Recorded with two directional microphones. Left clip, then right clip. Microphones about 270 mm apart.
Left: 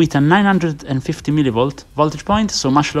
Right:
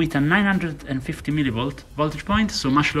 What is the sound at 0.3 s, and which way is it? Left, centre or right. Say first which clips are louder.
Speech: left 6 dB; centre.